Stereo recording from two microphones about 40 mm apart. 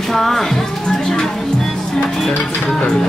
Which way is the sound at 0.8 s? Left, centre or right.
Centre.